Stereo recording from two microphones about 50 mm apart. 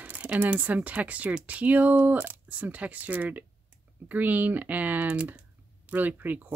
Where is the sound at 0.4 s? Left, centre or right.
Right.